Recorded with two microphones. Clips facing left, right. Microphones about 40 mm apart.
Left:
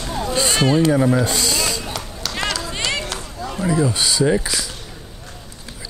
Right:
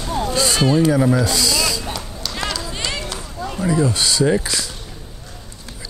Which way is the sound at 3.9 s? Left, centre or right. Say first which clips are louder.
Even; left.